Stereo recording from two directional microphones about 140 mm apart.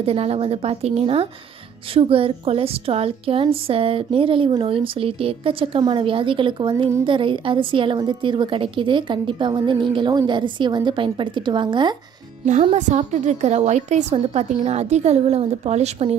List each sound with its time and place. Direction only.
0.0 s a woman's voice: 45° right (ahead or behind)
12.7 s a woman's voice: 60° right (ahead or behind)